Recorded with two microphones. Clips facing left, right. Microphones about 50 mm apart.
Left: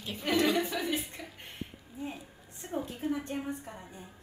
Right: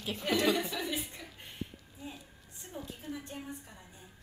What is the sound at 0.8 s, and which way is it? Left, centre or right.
Speech, left.